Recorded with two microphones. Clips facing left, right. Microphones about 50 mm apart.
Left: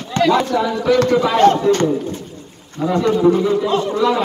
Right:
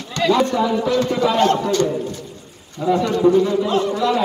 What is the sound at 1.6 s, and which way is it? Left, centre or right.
Speech, left.